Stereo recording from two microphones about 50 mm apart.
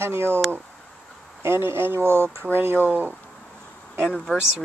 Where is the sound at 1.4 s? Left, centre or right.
Right.